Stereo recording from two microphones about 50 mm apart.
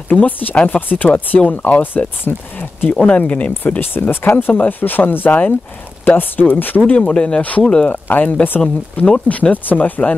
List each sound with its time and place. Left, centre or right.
0.1 s speech: left
2.2 s speech: left
2.9 s speech: left
3.8 s speech: left
6.9 s speech: left
7.9 s speech: left